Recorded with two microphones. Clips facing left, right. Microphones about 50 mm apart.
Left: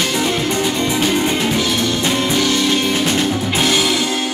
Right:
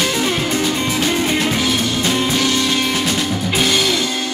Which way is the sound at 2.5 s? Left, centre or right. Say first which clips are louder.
Left 1 dB; centre.